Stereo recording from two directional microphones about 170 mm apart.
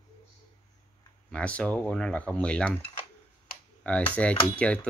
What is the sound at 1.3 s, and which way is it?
Speech, 5° left (ahead or behind).